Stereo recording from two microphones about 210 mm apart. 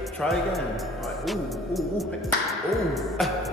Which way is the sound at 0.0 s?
Centre (ahead or behind).